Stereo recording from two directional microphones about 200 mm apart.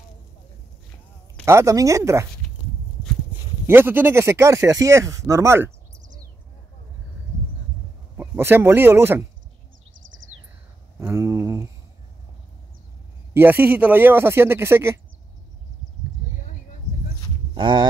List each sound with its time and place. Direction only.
1.4 s speech: 15° right (ahead or behind)
3.6 s speech: 10° right (ahead or behind)
8.2 s speech: 10° right (ahead or behind)
11.0 s speech: 10° right (ahead or behind)
13.3 s speech: 10° right (ahead or behind)
17.6 s speech: 20° right (ahead or behind)